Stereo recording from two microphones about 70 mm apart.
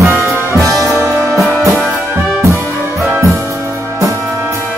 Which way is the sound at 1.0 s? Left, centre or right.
Right.